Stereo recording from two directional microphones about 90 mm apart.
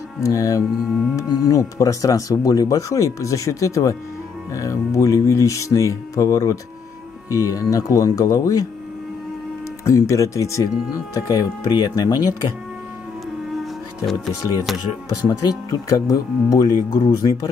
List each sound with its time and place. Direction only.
0.2 s speech: 35° left (ahead or behind)
0.8 s speech: centre (ahead or behind)
1.1 s speech: 35° left (ahead or behind)
9.8 s speech: 35° left (ahead or behind)
14.0 s speech: centre (ahead or behind)
15.2 s speech: 40° left (ahead or behind)